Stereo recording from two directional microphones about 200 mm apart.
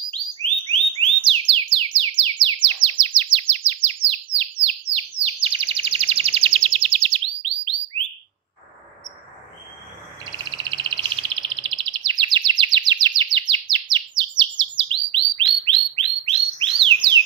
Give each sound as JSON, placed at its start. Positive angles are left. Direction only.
{"t": 0.7, "sound": "music", "side_deg": -25}
{"t": 4.4, "sound": "chirp", "side_deg": -30}
{"t": 10.3, "sound": "bird", "side_deg": -20}